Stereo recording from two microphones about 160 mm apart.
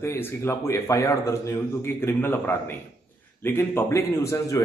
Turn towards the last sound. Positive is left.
turn(degrees=20)  # may be behind; listen again after turning